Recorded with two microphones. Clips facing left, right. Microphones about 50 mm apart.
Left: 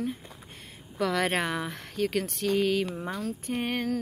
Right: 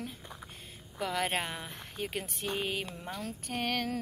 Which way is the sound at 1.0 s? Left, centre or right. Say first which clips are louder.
Left 6 dB; left.